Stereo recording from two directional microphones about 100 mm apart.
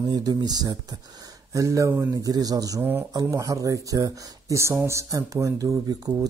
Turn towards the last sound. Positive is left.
turn(degrees=-35)  # may be behind; listen again after turning